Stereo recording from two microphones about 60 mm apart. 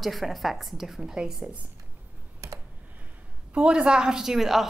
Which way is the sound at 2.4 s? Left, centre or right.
Right.